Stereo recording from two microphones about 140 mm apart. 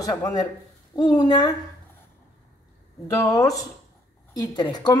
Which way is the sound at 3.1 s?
25° left (ahead or behind).